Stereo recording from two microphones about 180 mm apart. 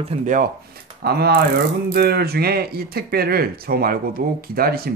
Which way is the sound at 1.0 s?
60° right (ahead or behind).